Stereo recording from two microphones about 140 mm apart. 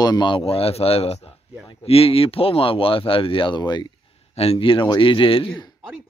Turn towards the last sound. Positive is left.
turn(degrees=40)  # may be behind; listen again after turning